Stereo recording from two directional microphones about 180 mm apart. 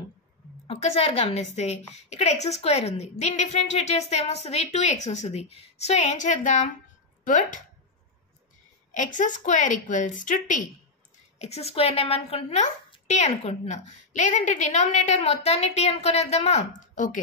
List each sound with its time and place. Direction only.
0.7 s a woman's voice: 35° left (ahead or behind)
8.9 s a woman's voice: 45° left (ahead or behind)